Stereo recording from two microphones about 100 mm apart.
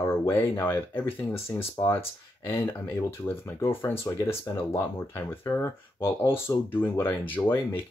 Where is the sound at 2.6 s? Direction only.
25° left (ahead or behind).